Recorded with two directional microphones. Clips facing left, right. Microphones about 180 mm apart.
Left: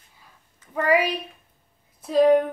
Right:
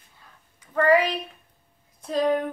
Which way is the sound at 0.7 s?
10° left (ahead or behind).